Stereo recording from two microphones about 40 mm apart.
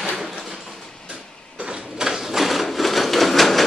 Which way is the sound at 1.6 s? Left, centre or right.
Right.